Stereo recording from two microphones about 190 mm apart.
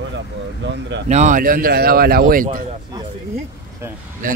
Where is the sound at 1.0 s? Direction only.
40° right (ahead or behind).